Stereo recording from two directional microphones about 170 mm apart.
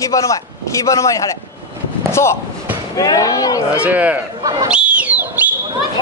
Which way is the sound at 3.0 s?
20° left (ahead or behind).